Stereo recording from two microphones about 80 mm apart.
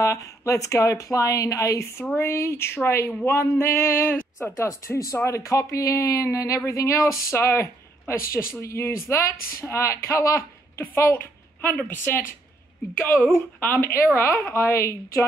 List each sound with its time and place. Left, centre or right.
0.0 s speech: left